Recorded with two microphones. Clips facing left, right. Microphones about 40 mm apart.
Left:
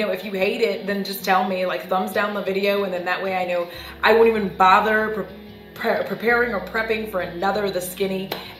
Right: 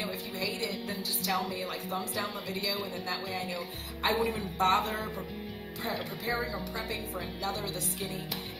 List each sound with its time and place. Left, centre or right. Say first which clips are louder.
0.0 s a woman's voice: left 13 dB; left